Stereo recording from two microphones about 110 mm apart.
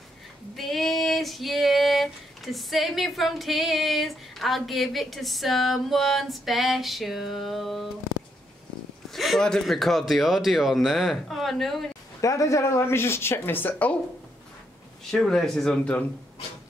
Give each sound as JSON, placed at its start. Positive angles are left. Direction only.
{"t": 0.6, "sound": "female singing", "side_deg": 0}
{"t": 9.1, "sound": "speech", "side_deg": 0}
{"t": 12.2, "sound": "speech", "side_deg": 30}
{"t": 15.0, "sound": "speech", "side_deg": 5}